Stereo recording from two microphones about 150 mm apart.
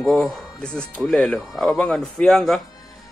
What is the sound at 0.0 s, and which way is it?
Speech, centre (ahead or behind).